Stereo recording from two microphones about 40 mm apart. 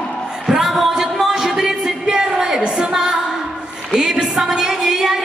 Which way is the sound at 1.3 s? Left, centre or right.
Centre.